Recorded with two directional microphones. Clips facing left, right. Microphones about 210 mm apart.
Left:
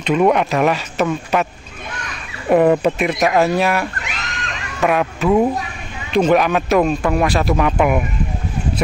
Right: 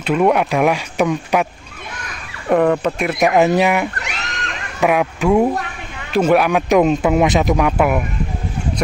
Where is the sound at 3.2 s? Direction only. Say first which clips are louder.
Right 3 dB; 15° right (ahead or behind).